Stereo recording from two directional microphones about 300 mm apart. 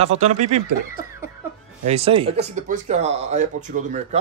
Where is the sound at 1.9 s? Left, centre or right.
Centre.